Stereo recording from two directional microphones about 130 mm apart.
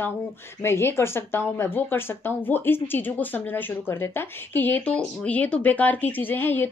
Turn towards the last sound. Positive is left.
turn(degrees=15)  # may be behind; listen again after turning